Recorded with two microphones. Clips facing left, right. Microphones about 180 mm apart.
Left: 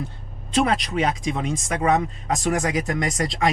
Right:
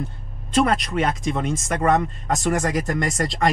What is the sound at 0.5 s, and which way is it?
Speech, centre (ahead or behind).